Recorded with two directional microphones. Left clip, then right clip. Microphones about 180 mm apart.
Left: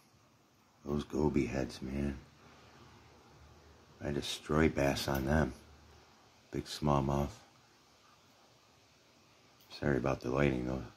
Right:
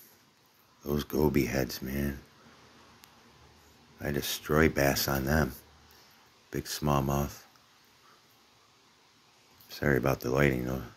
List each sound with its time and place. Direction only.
0.8 s speech: 10° right (ahead or behind)
4.0 s speech: 10° right (ahead or behind)
6.5 s speech: 5° right (ahead or behind)
9.7 s speech: 10° right (ahead or behind)